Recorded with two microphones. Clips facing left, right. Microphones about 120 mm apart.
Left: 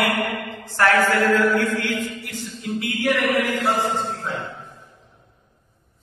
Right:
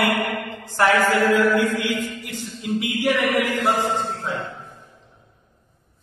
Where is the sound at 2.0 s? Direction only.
15° right (ahead or behind).